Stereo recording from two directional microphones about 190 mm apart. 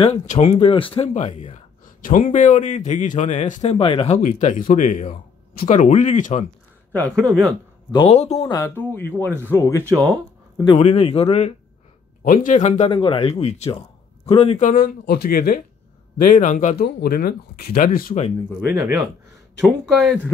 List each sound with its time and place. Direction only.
0.0 s a man's voice: 35° left (ahead or behind)
6.9 s speech: 5° left (ahead or behind)
7.2 s speech: 15° right (ahead or behind)
7.9 s a man's voice: 30° left (ahead or behind)
8.5 s speech: 15° left (ahead or behind)
9.8 s speech: 20° right (ahead or behind)
10.8 s a man's voice: 35° left (ahead or behind)
12.2 s a man's voice: 45° left (ahead or behind)
14.7 s speech: 55° left (ahead or behind)
18.7 s speech: 10° right (ahead or behind)
19.6 s speech: centre (ahead or behind)